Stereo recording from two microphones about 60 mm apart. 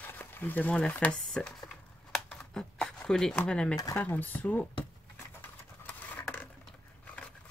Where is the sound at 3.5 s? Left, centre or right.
Centre.